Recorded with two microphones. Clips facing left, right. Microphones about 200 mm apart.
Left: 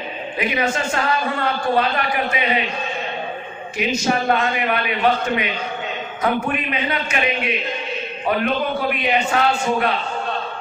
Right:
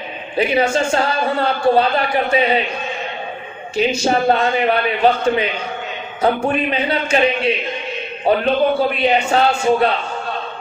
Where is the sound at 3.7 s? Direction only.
30° right (ahead or behind).